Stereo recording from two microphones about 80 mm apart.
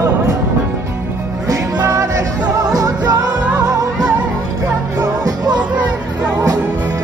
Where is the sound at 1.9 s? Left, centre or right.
Right.